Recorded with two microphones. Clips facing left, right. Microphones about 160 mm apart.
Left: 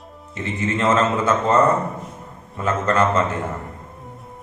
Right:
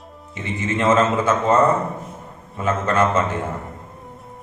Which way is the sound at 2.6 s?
5° right (ahead or behind).